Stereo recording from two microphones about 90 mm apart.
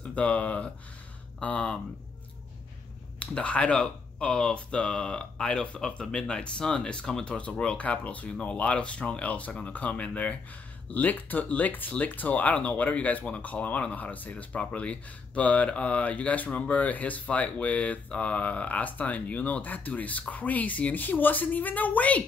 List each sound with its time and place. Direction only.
0.0 s speech: 15° left (ahead or behind)
3.2 s speech: 15° left (ahead or behind)